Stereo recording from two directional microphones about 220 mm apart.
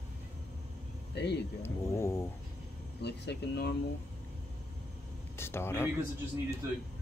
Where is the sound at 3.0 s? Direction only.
50° left (ahead or behind).